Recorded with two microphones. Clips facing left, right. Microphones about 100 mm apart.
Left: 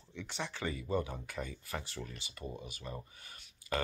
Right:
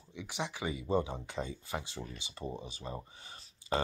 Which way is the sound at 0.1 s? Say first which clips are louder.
Right 2 dB; 15° right (ahead or behind).